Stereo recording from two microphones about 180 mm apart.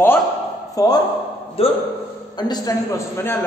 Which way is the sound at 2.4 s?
20° left (ahead or behind).